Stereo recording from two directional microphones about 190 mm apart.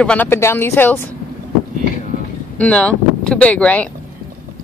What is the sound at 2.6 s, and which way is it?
Speech, 5° left (ahead or behind).